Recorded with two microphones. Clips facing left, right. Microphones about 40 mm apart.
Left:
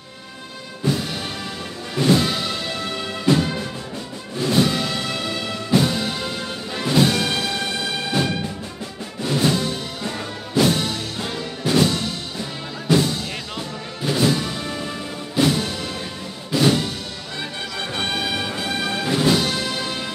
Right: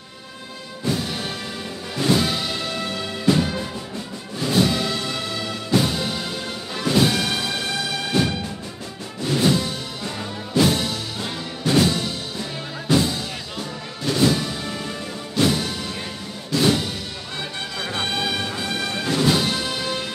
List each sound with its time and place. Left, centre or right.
2.0 s music: centre
9.2 s music: centre
13.6 s music: centre
14.2 s music: centre
16.5 s music: centre
17.4 s music: centre
19.3 s music: centre